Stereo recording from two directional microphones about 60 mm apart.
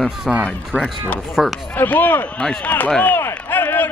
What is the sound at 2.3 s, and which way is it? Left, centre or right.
Speech, centre.